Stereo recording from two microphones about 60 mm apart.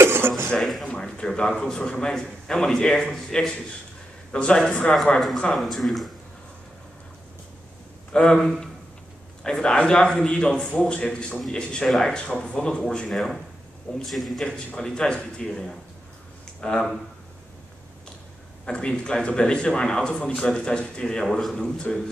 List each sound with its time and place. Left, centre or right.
0.0 s a sound: right
0.6 s a sound: centre
0.8 s a man's voice: centre
5.6 s speech: centre
8.1 s a man's voice: centre
13.1 s speech: centre
14.4 s a man's voice: centre
18.7 s a man's voice: centre